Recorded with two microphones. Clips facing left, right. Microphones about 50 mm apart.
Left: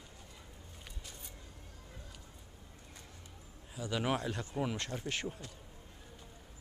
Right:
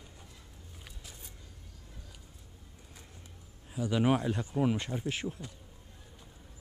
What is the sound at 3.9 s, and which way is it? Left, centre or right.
Speech, centre.